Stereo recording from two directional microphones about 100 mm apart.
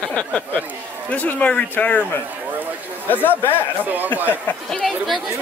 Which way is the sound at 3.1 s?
20° left (ahead or behind).